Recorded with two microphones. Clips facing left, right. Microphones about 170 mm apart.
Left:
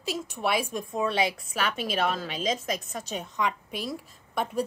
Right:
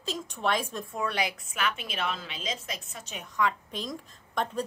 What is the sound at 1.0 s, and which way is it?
A woman's voice, 25° left (ahead or behind).